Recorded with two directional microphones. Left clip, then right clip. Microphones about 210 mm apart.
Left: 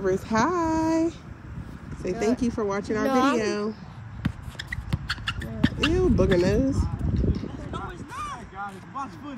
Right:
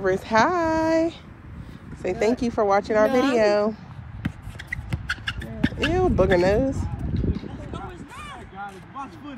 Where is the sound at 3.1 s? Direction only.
35° left (ahead or behind).